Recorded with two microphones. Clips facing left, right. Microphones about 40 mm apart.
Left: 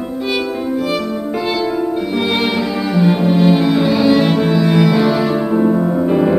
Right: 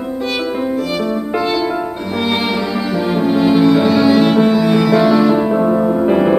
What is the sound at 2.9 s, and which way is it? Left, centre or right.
Music, centre.